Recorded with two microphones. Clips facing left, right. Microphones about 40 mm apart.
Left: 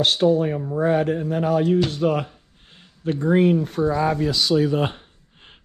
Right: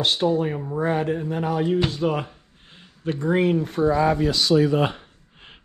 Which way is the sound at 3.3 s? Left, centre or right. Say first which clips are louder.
Left 3 dB; right.